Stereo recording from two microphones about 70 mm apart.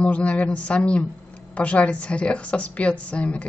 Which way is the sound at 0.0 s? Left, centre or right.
Centre.